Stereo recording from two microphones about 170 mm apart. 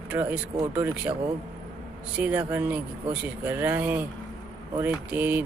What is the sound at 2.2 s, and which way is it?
Speech, 10° right (ahead or behind).